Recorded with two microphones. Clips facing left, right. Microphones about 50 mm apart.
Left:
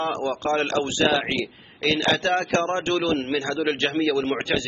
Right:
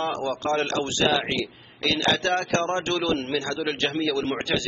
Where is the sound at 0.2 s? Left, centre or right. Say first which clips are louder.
Left 1 dB; left.